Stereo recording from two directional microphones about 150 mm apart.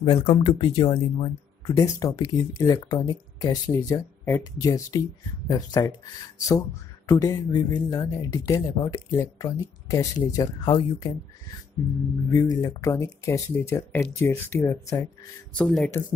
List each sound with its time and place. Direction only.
0.0 s speech: 35° left (ahead or behind)
7.1 s speech: 25° left (ahead or behind)
12.3 s speech: 25° left (ahead or behind)
15.5 s speech: 5° left (ahead or behind)